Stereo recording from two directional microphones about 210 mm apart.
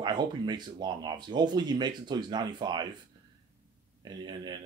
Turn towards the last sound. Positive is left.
turn(degrees=-20)  # may be behind; listen again after turning